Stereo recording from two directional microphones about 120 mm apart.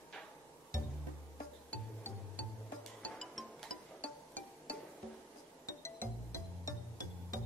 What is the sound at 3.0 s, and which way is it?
Music, 5° left (ahead or behind).